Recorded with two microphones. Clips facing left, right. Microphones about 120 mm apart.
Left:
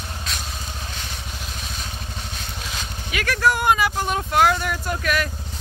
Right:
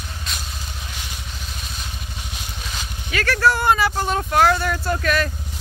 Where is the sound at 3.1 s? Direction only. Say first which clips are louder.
Right 2 dB; 10° left (ahead or behind).